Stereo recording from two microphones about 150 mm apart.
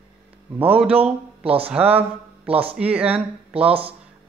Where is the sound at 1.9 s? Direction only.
40° right (ahead or behind).